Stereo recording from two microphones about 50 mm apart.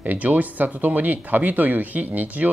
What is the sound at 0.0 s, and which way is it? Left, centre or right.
Speech, right.